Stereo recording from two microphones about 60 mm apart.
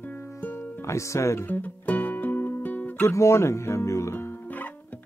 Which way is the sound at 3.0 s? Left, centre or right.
Left.